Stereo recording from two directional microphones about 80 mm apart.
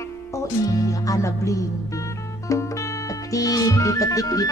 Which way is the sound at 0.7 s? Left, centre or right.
Left.